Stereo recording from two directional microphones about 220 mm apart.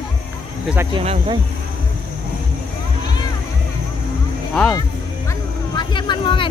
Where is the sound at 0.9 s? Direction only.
25° right (ahead or behind).